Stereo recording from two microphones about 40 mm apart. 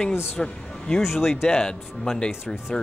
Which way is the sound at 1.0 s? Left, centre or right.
Centre.